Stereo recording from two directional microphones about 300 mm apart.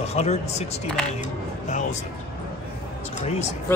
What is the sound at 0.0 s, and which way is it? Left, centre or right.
Speech, left.